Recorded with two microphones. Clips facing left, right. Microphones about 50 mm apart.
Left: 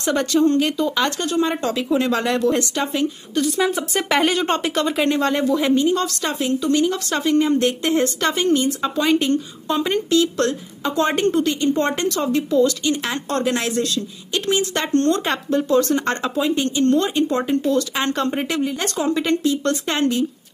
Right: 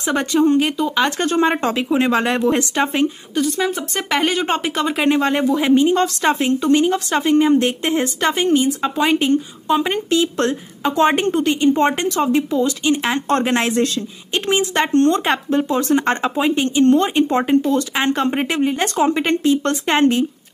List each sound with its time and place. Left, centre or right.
0.0 s speech: centre
1.2 s a woman's voice: right
3.3 s speech: centre; by 5.9 s right
5.9 s a woman's voice: right